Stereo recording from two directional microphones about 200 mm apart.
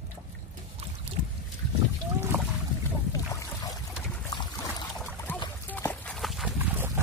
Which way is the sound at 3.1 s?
15° left (ahead or behind).